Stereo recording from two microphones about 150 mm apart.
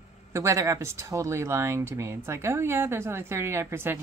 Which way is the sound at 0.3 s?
20° right (ahead or behind).